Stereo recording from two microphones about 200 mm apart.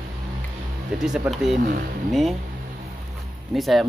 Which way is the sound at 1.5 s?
50° right (ahead or behind).